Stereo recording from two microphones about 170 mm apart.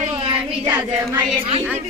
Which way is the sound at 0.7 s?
10° right (ahead or behind).